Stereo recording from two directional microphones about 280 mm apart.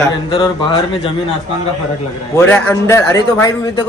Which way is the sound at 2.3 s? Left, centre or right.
Centre.